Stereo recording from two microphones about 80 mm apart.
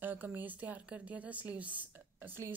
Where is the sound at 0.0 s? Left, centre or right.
Right.